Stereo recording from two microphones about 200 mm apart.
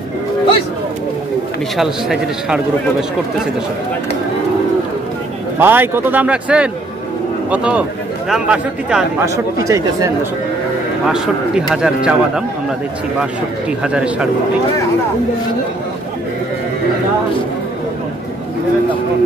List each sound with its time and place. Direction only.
1.8 s speech: centre (ahead or behind)
5.6 s speech: 10° right (ahead or behind)
9.2 s speech: 15° right (ahead or behind)
11.1 s speech: 5° right (ahead or behind)